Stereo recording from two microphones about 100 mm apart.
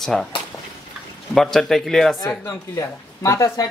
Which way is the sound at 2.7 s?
30° left (ahead or behind).